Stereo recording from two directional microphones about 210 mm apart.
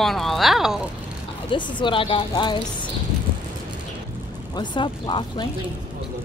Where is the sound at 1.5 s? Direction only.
20° left (ahead or behind).